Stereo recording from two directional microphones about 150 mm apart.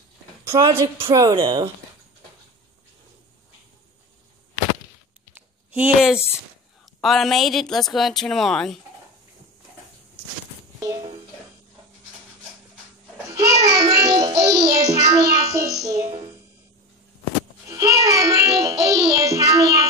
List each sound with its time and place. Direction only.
0.5 s music: 20° right (ahead or behind)
5.3 s a sound: 10° right (ahead or behind)
7.0 s speech: centre (ahead or behind)
10.8 s music: 25° right (ahead or behind)
13.3 s child singing: 20° right (ahead or behind)
17.6 s music: 20° right (ahead or behind)